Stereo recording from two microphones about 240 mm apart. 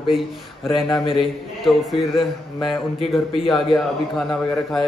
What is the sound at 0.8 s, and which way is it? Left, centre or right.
Speech, left.